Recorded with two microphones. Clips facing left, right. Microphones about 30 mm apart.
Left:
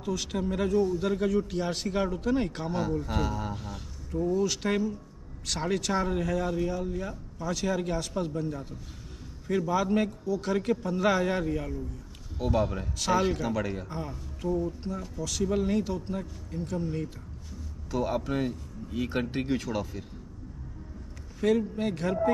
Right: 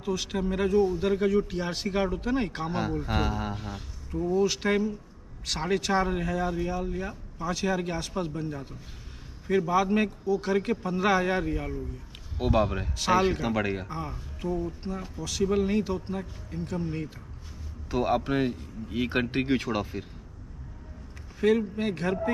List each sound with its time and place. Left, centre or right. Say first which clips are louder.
0.0 s a man's voice: right 1 dB; centre; by 13.8 s right
13.8 s a man's voice: right 1 dB; centre
17.9 s speech: right 3 dB; right
21.4 s a man's voice: right 2 dB; centre